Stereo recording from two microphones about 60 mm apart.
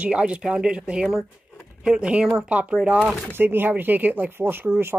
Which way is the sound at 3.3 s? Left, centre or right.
Right.